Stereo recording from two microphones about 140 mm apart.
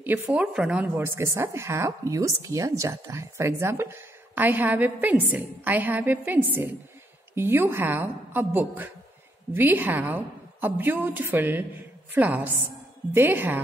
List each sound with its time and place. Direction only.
0.0 s a woman's voice: 10° right (ahead or behind)